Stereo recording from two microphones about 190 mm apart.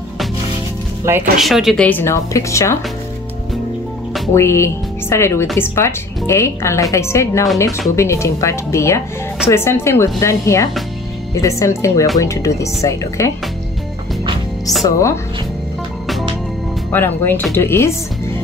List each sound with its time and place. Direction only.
1.1 s speech: 15° right (ahead or behind)
1.4 s speech: centre (ahead or behind); by 2.8 s 15° left (ahead or behind)
4.3 s speech: 15° left (ahead or behind)
16.9 s speech: 10° left (ahead or behind)